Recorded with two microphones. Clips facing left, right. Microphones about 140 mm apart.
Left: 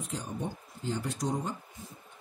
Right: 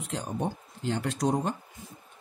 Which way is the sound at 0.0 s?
80° right.